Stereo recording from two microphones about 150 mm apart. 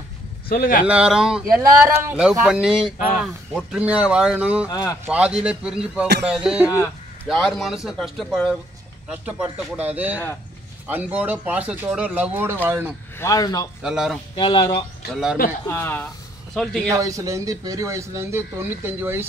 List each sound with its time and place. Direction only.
0.5 s speech: 75° left (ahead or behind)
0.8 s speech: 5° right (ahead or behind)
1.6 s speech: 15° right (ahead or behind)
2.1 s speech: 5° right (ahead or behind)
4.6 s a man's voice: 25° left (ahead or behind)
5.0 s speech: 10° right (ahead or behind)
13.2 s a man's voice: 25° left (ahead or behind)
13.8 s speech: 5° right (ahead or behind)
14.3 s speech: 35° left (ahead or behind)
15.6 s speech: 15° left (ahead or behind)
16.5 s speech: 5° left (ahead or behind)
16.9 s speech: 20° right (ahead or behind)